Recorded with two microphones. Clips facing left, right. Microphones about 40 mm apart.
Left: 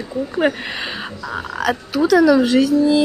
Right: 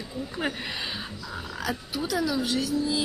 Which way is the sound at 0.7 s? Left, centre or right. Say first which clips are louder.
Left 7 dB; left.